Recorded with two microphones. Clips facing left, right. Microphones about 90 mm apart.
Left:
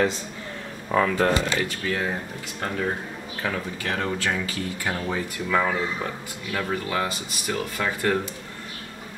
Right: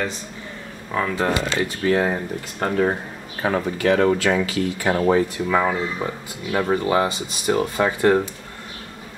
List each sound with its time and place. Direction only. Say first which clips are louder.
1.0 s speech: right 1 dB; 5° right (ahead or behind)
1.3 s speech: right 2 dB; 25° right (ahead or behind)
1.9 s speech: right 7 dB; 45° right (ahead or behind)
3.4 s speech: right 7 dB; 35° right (ahead or behind)
3.8 s speech: right 10 dB; 90° right; by 5.2 s 60° right (ahead or behind)
5.5 s speech: even; 20° right (ahead or behind)